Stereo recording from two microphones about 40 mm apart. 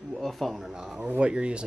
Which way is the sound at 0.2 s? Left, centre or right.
Centre.